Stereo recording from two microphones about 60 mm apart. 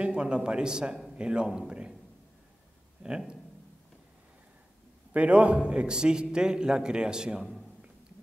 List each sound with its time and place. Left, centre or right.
0.0 s a man's voice: centre
1.7 s a sound: centre
3.0 s speech: centre
5.1 s a man's voice: right